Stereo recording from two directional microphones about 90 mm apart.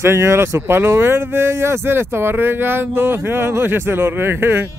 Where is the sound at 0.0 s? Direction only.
30° right (ahead or behind).